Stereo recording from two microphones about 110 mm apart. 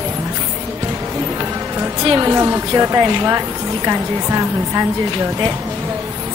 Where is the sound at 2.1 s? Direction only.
25° right (ahead or behind).